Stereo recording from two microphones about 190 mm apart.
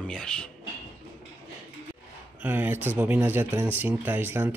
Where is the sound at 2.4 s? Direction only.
10° right (ahead or behind).